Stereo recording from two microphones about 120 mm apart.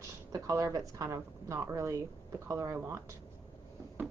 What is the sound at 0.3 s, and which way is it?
A woman's voice, 30° right (ahead or behind).